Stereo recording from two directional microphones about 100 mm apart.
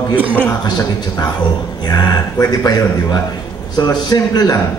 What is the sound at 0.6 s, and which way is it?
A man's voice, 45° left (ahead or behind).